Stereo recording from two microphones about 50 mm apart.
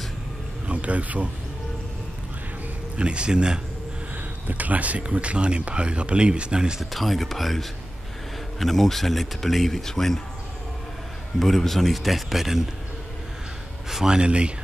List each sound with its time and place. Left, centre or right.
0.7 s a man's voice: right
3.0 s speech: right
4.5 s speech: right; by 6.8 s centre
6.8 s speech: centre
11.3 s speech: centre
13.8 s speech: centre